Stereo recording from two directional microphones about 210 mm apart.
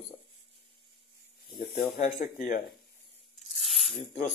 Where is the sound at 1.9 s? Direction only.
30° left (ahead or behind).